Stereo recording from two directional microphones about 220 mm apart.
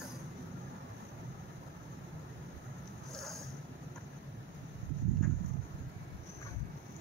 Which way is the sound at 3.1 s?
Centre (ahead or behind).